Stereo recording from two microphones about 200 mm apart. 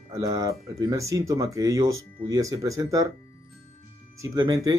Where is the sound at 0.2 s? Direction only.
15° right (ahead or behind).